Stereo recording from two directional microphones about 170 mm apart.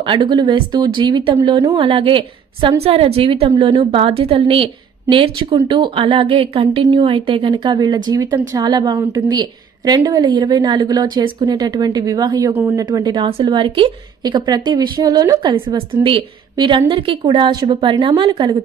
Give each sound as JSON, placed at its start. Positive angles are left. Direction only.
{"t": 0.0, "sound": "a woman's voice", "side_deg": -30}